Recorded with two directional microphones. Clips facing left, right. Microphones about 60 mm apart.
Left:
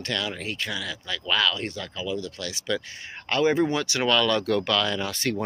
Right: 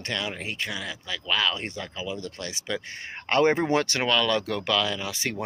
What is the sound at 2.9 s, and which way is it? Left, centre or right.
Speech, right.